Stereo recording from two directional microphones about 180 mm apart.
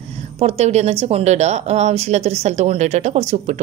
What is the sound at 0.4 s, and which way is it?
A woman's voice, 35° right (ahead or behind).